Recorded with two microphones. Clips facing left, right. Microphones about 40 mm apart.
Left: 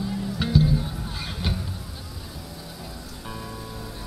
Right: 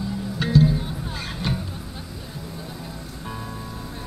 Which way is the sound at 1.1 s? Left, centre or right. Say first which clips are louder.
Right 3 dB; centre.